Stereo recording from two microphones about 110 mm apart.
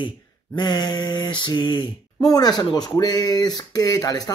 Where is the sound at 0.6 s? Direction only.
40° left (ahead or behind).